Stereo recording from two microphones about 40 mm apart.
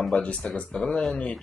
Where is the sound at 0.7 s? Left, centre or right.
Left.